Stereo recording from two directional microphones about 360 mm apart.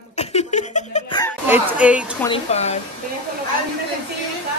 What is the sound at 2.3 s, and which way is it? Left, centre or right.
Laughter, centre.